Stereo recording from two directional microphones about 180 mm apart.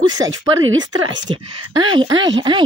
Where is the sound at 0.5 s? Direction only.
90° right.